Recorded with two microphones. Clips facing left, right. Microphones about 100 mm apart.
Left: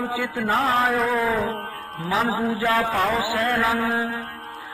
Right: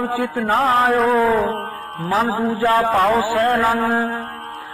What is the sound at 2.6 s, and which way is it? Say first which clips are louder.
Speech: right 7 dB; 35° right (ahead or behind).